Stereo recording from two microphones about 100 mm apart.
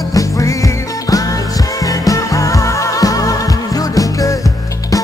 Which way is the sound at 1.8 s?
35° left (ahead or behind).